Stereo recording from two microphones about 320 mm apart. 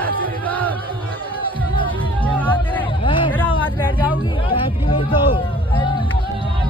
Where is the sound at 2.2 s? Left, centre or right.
Centre.